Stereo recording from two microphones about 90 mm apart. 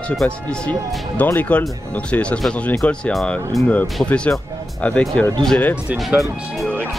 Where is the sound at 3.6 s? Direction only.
15° left (ahead or behind).